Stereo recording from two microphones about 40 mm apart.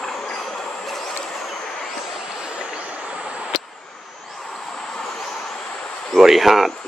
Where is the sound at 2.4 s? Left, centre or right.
Right.